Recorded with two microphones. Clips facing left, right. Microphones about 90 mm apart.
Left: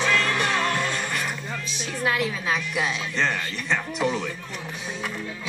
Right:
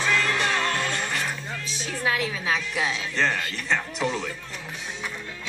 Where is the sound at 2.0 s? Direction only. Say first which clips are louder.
Left 1 dB; 5° left (ahead or behind).